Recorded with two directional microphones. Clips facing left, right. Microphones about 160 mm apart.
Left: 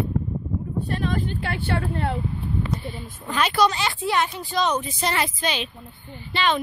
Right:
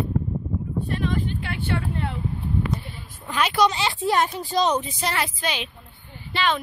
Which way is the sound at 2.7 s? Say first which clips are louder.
Left 1 dB; centre (ahead or behind).